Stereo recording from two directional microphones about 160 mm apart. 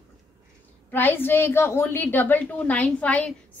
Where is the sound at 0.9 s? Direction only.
10° left (ahead or behind).